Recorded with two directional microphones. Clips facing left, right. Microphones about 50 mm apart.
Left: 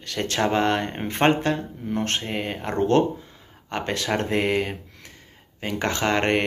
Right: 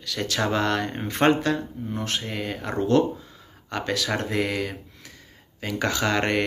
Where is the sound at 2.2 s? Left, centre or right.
Left.